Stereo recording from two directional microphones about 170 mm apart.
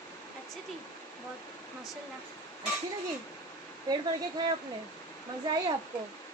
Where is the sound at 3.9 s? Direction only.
25° right (ahead or behind).